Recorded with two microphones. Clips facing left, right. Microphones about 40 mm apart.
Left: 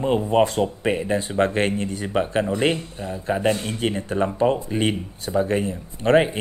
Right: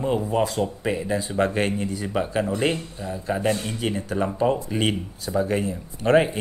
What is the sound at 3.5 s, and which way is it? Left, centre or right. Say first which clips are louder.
Speech: left 1 dB; centre.